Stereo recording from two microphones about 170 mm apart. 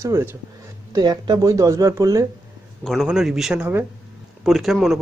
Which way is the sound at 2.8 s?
Centre (ahead or behind).